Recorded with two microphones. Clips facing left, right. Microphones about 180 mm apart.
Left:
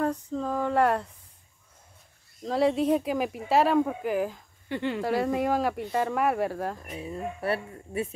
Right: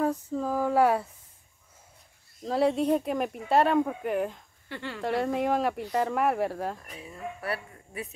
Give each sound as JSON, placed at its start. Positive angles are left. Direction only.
{"t": 0.0, "sound": "a sound", "side_deg": -5}
{"t": 2.4, "sound": "speech", "side_deg": 0}
{"t": 4.6, "sound": "speech", "side_deg": 20}
{"t": 5.0, "sound": "speech", "side_deg": 0}
{"t": 6.9, "sound": "speech", "side_deg": 25}